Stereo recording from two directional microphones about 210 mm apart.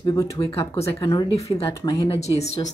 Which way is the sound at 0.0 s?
15° left (ahead or behind).